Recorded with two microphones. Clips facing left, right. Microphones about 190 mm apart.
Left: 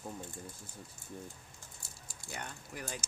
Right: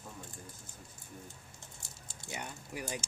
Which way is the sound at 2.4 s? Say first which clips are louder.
Right 2 dB; 10° right (ahead or behind).